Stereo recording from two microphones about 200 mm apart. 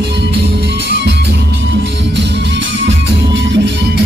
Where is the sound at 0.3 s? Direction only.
55° right (ahead or behind).